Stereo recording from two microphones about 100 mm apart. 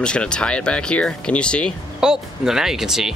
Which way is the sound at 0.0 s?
10° left (ahead or behind).